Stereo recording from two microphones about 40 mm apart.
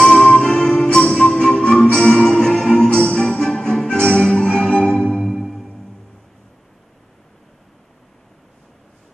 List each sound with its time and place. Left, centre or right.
0.1 s music: left
4.9 s music: centre